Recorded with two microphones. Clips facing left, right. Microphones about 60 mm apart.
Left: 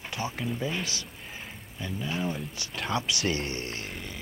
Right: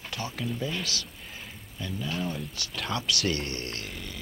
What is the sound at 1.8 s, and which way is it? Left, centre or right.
Speech, centre.